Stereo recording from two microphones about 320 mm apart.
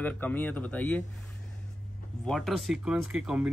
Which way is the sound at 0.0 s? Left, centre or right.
Centre.